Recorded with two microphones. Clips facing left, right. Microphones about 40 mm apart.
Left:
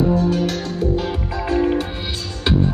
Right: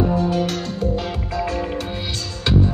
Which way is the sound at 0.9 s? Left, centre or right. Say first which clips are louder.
Left 1 dB; centre.